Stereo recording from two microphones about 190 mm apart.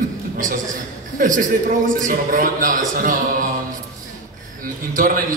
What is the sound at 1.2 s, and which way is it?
A man's voice, 45° right (ahead or behind).